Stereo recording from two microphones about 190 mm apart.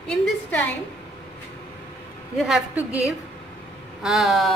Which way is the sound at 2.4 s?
5° right (ahead or behind).